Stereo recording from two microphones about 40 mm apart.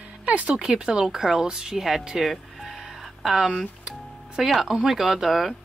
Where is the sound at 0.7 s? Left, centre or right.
Centre.